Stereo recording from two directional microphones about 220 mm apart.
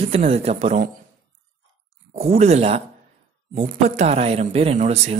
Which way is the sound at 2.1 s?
30° right (ahead or behind).